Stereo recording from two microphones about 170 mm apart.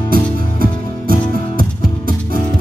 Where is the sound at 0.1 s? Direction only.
55° right (ahead or behind).